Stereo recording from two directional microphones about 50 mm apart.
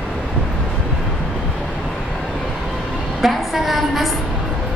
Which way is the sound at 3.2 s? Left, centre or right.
Centre.